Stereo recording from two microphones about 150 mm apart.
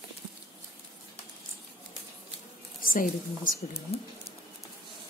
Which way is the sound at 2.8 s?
65° left (ahead or behind).